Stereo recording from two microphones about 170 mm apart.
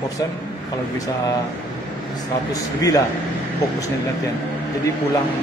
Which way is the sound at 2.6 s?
20° left (ahead or behind).